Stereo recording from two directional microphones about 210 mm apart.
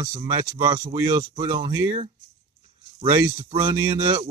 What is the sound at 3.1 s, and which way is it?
Speech, 25° right (ahead or behind).